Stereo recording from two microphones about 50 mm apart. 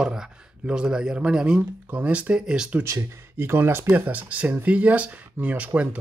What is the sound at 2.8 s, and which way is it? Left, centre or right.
Speech, right.